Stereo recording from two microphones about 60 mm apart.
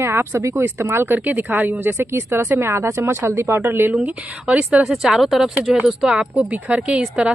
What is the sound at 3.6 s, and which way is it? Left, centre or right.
Speech, right.